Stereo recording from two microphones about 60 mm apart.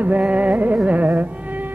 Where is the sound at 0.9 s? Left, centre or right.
Right.